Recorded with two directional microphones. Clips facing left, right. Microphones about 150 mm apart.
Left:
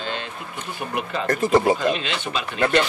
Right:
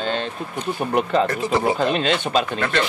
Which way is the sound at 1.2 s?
45° left (ahead or behind).